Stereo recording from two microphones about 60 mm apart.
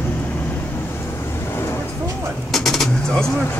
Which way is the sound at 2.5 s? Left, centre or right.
Centre.